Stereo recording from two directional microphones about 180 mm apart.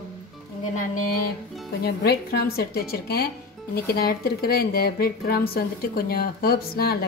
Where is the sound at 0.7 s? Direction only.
50° left (ahead or behind).